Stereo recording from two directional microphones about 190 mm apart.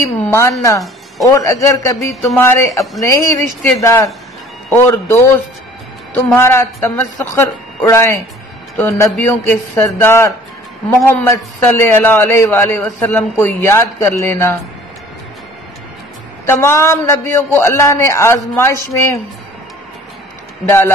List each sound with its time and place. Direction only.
0.0 s a man's voice: 15° left (ahead or behind)
16.4 s a man's voice: 15° left (ahead or behind)
20.6 s a man's voice: 15° left (ahead or behind)